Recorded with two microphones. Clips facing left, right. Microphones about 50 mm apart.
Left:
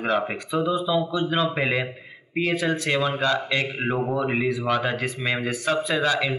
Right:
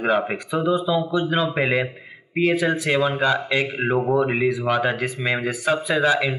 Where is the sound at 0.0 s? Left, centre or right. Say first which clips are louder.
Right 3 dB; centre.